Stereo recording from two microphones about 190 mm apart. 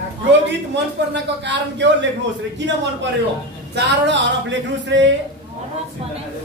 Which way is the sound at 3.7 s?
65° right (ahead or behind).